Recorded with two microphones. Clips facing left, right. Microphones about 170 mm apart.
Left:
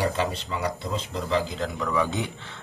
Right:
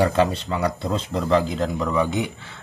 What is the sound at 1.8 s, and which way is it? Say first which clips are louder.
Speech: right 2 dB; 25° right (ahead or behind).